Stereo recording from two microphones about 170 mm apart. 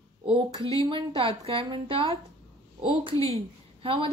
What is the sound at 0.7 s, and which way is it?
A woman's voice, 30° right (ahead or behind).